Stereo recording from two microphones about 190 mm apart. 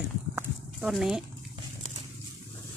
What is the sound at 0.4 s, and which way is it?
Horse, 5° right (ahead or behind).